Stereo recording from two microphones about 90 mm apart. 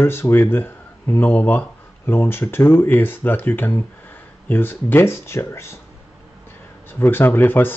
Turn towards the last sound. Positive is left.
turn(degrees=20)  # may be behind; listen again after turning